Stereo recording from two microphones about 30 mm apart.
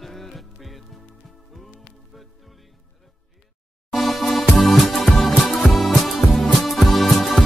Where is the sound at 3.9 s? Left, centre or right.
Centre.